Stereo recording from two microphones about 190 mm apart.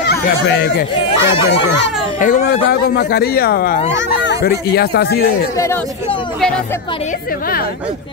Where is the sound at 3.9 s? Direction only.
70° left (ahead or behind).